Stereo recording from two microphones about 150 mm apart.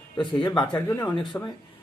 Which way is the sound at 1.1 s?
30° left (ahead or behind).